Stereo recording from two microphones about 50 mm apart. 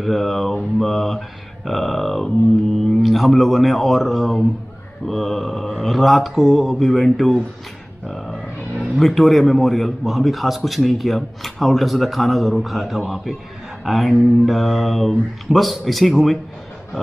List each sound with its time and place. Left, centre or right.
0.0 s a man's voice: centre
8.1 s music: centre
8.9 s a man's voice: centre